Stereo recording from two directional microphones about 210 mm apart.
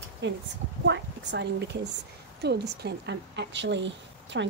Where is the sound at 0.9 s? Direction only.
55° right (ahead or behind).